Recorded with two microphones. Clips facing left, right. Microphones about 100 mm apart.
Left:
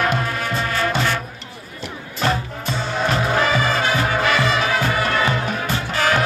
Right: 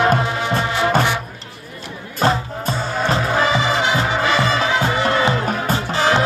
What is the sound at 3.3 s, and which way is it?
Music, 20° right (ahead or behind).